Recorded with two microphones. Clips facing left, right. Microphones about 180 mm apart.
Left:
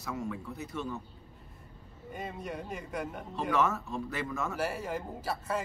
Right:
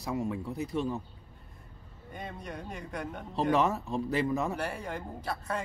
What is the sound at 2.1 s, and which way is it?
Speech, 5° left (ahead or behind).